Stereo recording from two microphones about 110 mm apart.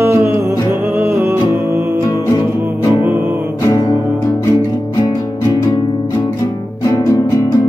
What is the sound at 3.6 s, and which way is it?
Music, 35° left (ahead or behind).